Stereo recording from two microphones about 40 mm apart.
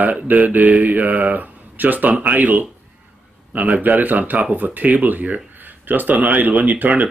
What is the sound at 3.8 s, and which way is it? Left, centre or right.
Speech, right.